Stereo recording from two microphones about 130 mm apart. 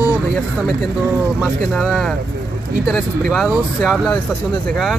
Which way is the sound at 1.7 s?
Centre (ahead or behind).